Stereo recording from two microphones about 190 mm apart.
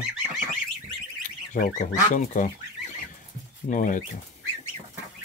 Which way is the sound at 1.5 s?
40° left (ahead or behind).